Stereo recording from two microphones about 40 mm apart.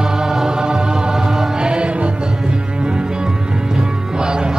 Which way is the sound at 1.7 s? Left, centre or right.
Right.